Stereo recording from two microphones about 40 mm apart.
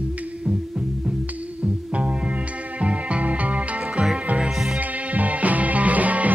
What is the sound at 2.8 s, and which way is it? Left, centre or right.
Music, right.